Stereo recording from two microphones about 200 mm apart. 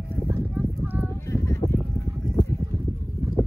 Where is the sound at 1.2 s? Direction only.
15° left (ahead or behind).